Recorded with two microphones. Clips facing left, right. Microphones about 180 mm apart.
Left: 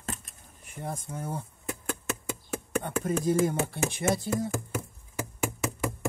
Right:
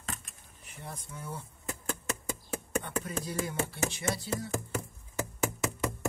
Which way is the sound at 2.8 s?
50° left (ahead or behind).